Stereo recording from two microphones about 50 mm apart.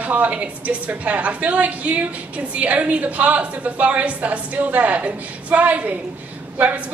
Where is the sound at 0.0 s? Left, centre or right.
Right.